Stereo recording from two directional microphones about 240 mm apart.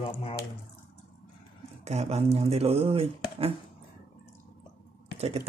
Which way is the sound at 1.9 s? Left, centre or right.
Right.